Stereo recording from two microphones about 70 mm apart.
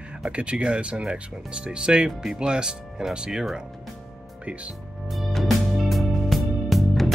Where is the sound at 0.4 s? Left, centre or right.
Centre.